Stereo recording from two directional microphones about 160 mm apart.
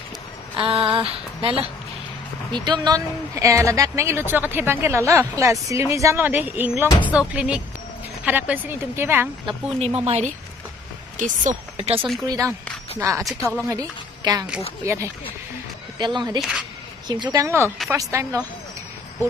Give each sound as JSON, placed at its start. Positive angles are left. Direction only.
{"t": 0.6, "sound": "a sound", "side_deg": -35}
{"t": 2.5, "sound": "speech", "side_deg": -25}
{"t": 9.5, "sound": "a sound", "side_deg": -40}
{"t": 10.0, "sound": "speech", "side_deg": -45}
{"t": 11.1, "sound": "speech", "side_deg": -55}
{"t": 12.3, "sound": "speech", "side_deg": -20}
{"t": 13.2, "sound": "a woman's voice", "side_deg": 0}
{"t": 13.7, "sound": "a woman's voice", "side_deg": -20}
{"t": 16.3, "sound": "a woman's voice", "side_deg": -5}
{"t": 17.1, "sound": "speech", "side_deg": -25}